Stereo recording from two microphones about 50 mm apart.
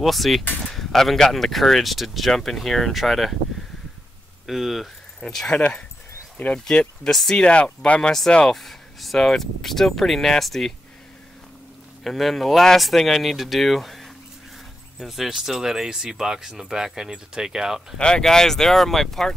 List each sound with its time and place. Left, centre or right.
0.0 s speech: centre
4.5 s speech: centre
7.4 s speech: left
8.5 s speech: centre
12.0 s speech: centre
17.9 s speech: centre